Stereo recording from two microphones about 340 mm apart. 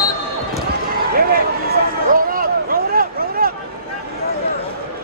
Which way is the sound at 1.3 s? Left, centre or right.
Right.